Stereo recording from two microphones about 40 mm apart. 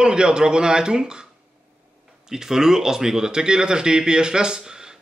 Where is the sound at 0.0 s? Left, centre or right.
Right.